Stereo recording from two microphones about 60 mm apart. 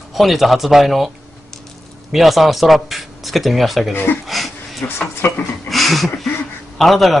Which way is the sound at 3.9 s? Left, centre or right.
Left.